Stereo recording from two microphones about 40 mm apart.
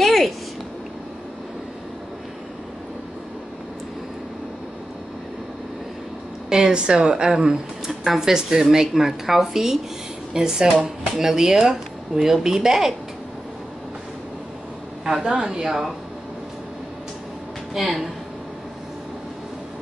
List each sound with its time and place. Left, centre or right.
0.0 s a sound: centre
6.7 s speech: right
7.9 s a sound: centre
8.2 s speech: centre
15.0 s speech: centre
17.7 s a woman's voice: centre